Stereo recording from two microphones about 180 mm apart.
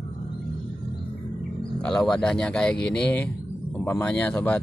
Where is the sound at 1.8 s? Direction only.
5° left (ahead or behind).